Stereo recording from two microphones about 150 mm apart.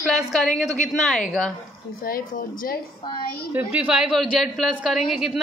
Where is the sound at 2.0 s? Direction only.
70° left (ahead or behind).